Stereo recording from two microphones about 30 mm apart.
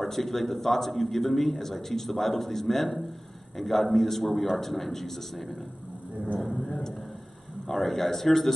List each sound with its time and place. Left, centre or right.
0.0 s a man's voice: centre
6.2 s speech: left
7.6 s speech: centre